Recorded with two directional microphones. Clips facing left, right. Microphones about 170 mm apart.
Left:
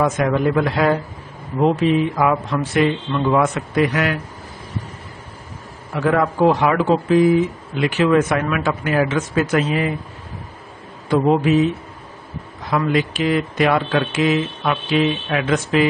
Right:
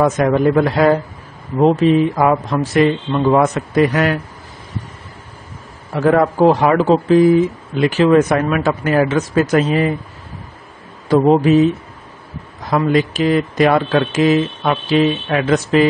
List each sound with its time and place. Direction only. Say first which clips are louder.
0.0 s speech: right 4 dB; 40° right (ahead or behind)
2.0 s speech: right 3 dB; 40° right (ahead or behind)
5.9 s speech: right 4 dB; 40° right (ahead or behind)
11.1 s speech: right 4 dB; 40° right (ahead or behind)
12.6 s speech: right 4 dB; 40° right (ahead or behind)